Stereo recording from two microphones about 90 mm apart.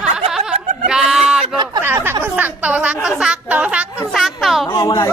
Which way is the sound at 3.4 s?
15° right (ahead or behind).